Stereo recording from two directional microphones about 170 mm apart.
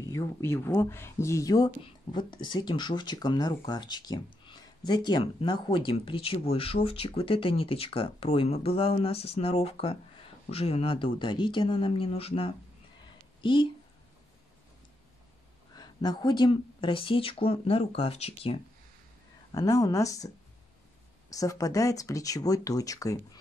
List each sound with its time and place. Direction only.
0.1 s speech: 15° left (ahead or behind)
15.7 s speech: 25° left (ahead or behind)
19.5 s speech: 20° left (ahead or behind)